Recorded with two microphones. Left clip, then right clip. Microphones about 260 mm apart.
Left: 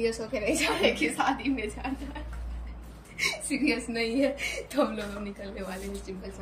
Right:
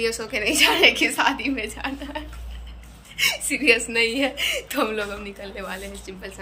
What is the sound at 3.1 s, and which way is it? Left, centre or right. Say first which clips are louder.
A woman's voice: right 7 dB; centre.